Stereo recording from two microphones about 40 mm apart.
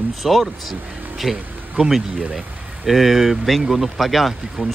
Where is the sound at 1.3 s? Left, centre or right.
Right.